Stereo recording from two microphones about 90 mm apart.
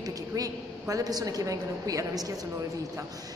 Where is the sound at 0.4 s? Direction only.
40° right (ahead or behind).